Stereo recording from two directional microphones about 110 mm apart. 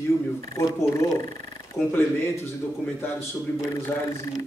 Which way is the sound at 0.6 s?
30° left (ahead or behind).